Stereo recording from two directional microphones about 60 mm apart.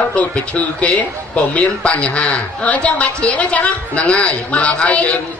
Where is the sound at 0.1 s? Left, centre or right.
Left.